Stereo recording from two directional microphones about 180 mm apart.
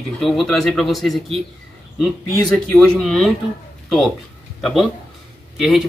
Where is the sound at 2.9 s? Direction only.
Centre (ahead or behind).